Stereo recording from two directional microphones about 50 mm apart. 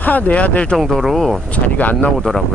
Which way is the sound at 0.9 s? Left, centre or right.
Centre.